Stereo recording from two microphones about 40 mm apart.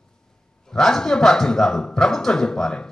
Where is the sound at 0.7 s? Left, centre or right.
Centre.